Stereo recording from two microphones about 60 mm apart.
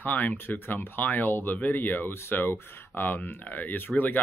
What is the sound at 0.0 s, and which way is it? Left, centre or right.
Speech, left.